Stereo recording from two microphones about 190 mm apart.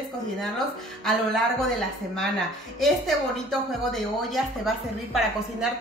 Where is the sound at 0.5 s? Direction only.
Centre (ahead or behind).